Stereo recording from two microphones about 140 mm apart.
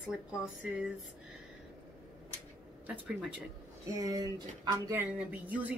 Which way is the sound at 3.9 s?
25° right (ahead or behind).